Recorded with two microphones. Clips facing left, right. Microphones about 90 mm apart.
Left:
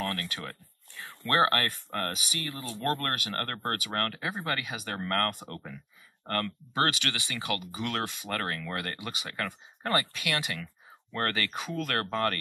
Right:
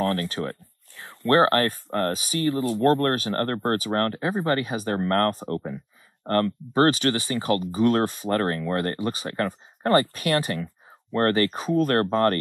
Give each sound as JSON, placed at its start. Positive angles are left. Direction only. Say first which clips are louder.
{"t": 0.0, "sound": "speech", "louder": "right 9 dB", "side_deg": -30}
{"t": 2.4, "sound": "speech", "louder": "right 12 dB", "side_deg": -20}
{"t": 10.6, "sound": "a sound", "louder": "right 9 dB", "side_deg": -25}
{"t": 11.3, "sound": "speech", "louder": "right 11 dB", "side_deg": -35}